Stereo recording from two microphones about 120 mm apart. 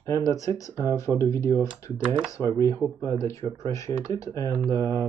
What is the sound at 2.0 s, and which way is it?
Speech, 10° right (ahead or behind).